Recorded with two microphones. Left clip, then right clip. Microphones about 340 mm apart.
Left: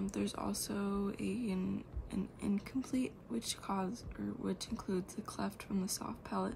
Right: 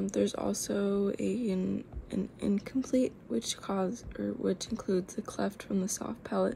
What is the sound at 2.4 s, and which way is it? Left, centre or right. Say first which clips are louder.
Speech: right 7 dB; centre.